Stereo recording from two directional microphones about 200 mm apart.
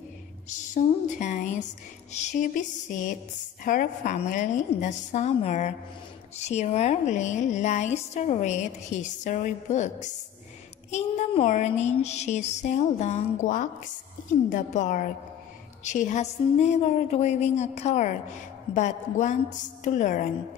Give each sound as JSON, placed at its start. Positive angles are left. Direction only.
{"t": 0.5, "sound": "speech", "side_deg": 40}